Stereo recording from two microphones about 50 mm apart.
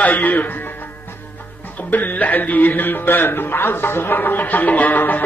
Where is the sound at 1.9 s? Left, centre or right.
Left.